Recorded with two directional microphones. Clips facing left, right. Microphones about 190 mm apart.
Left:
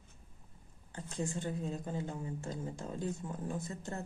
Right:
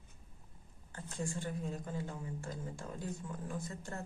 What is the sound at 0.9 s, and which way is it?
Speech, 20° left (ahead or behind).